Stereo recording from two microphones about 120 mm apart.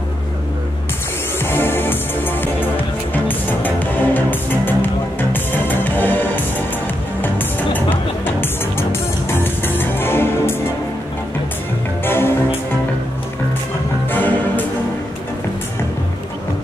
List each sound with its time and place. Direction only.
1.4 s music: 20° left (ahead or behind)
12.0 s music: 20° left (ahead or behind)
14.1 s music: 15° left (ahead or behind)